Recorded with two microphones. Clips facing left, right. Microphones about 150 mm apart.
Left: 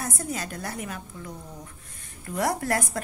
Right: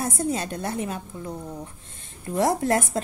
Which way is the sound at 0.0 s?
25° right (ahead or behind).